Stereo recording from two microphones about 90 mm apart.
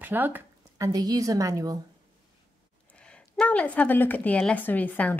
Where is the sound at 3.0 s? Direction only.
10° left (ahead or behind).